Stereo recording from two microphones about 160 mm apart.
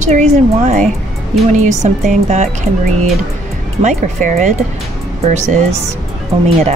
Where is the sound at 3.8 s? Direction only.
50° right (ahead or behind).